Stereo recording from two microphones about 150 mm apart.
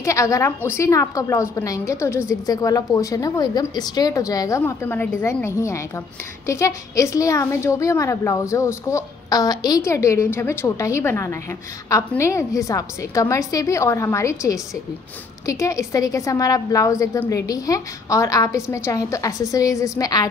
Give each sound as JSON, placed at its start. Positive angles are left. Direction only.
{"t": 0.0, "sound": "a woman's voice", "side_deg": 20}